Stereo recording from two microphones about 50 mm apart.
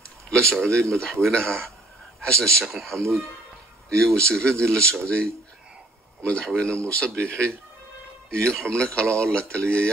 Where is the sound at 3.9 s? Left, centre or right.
Centre.